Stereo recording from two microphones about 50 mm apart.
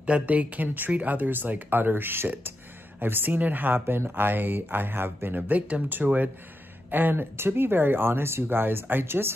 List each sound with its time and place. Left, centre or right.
0.0 s speech: right